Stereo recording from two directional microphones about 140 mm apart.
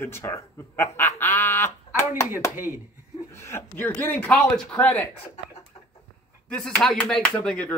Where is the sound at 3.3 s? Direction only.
20° left (ahead or behind).